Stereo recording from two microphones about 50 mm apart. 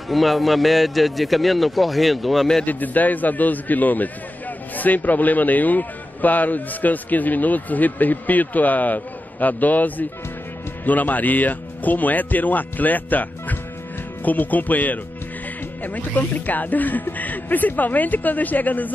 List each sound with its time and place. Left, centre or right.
0.1 s a man's voice: centre
2.6 s a man's voice: left